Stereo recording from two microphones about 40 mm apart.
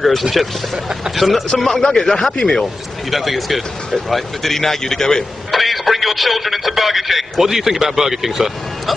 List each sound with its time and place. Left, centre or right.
0.0 s speech: centre
1.8 s a man's voice: centre
3.1 s speech: centre
5.5 s speech: centre